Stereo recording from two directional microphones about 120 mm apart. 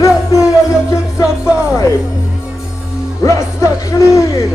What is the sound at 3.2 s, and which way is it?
A man's voice, 25° left (ahead or behind).